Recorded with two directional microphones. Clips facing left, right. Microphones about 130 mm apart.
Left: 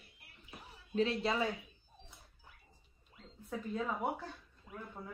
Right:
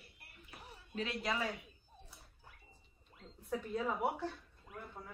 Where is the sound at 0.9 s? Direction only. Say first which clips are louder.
Left 6 dB; 30° left (ahead or behind).